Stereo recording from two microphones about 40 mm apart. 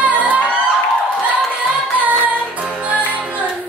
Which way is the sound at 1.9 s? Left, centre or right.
Right.